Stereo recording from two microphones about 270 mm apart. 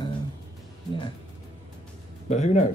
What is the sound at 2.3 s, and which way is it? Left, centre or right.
Speech, left.